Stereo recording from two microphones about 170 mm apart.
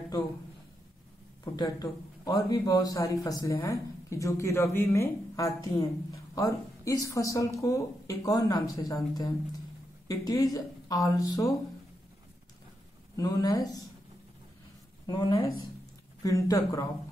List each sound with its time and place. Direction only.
1.4 s a man's voice: 20° left (ahead or behind)
13.1 s a man's voice: 20° left (ahead or behind)
15.0 s a man's voice: 25° left (ahead or behind)